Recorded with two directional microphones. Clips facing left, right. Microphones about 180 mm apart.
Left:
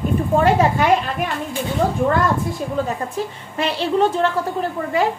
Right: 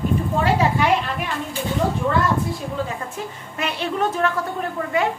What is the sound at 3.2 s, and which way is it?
A woman's voice, 30° left (ahead or behind).